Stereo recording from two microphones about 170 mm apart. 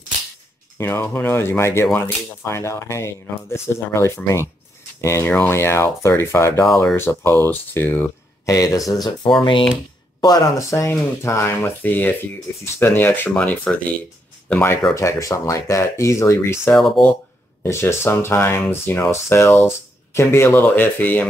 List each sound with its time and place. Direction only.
0.7 s speech: 15° left (ahead or behind)